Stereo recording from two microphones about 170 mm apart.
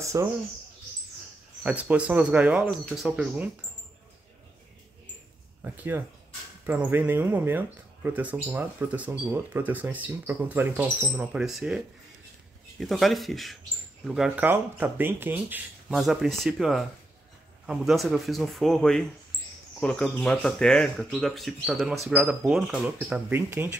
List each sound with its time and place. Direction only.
0.0 s speech: 20° right (ahead or behind)
1.6 s speech: 10° right (ahead or behind)
5.6 s speech: 10° right (ahead or behind)
15.9 s speech: centre (ahead or behind)